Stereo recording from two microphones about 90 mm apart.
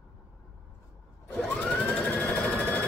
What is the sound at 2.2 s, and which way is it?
Sewing machine, 15° left (ahead or behind).